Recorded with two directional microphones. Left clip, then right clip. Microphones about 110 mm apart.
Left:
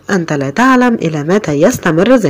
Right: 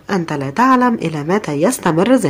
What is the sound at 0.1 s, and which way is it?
Speech, 25° left (ahead or behind).